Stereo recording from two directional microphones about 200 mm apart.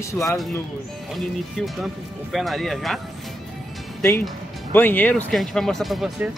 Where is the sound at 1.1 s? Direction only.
Centre (ahead or behind).